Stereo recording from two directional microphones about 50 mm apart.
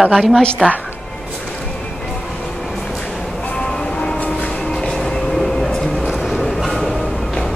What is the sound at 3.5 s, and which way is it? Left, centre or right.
Music, centre.